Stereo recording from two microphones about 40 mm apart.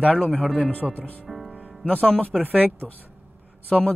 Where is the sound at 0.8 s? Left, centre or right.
Right.